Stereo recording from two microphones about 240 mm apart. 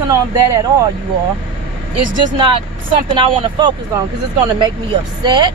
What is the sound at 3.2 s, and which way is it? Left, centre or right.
Speech, centre.